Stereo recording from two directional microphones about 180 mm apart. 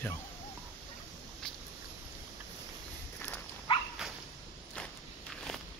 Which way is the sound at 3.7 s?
25° left (ahead or behind).